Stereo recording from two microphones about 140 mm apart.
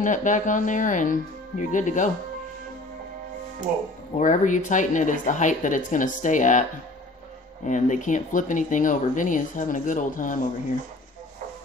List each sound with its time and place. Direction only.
0.0 s speech: 65° left (ahead or behind)
4.2 s speech: 65° left (ahead or behind)
7.6 s speech: 65° left (ahead or behind)